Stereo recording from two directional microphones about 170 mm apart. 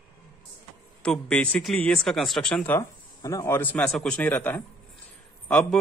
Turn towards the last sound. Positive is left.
turn(degrees=5)  # may be behind; listen again after turning